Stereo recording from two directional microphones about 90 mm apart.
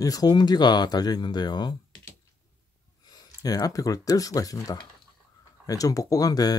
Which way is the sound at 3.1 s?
45° left (ahead or behind).